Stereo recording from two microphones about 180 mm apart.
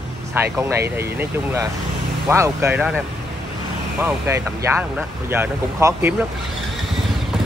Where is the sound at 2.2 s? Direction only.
15° right (ahead or behind).